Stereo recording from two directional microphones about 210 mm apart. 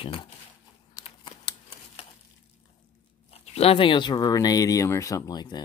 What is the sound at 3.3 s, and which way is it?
Speech, 30° left (ahead or behind).